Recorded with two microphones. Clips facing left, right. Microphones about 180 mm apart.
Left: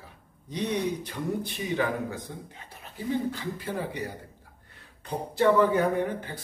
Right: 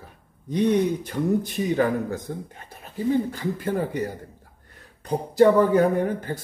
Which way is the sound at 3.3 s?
45° right (ahead or behind).